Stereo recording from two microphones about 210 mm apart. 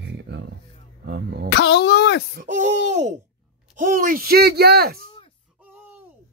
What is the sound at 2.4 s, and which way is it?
Speech, 35° right (ahead or behind).